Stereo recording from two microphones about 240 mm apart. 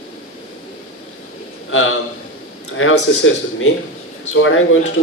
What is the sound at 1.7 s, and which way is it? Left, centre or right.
A man's voice, left.